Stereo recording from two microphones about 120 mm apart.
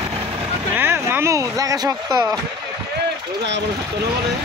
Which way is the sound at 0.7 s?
20° right (ahead or behind).